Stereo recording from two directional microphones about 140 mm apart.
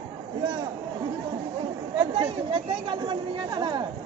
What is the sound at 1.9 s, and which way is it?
Speech, 35° right (ahead or behind).